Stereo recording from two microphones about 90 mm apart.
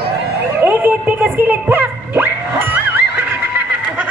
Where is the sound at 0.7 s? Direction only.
20° right (ahead or behind).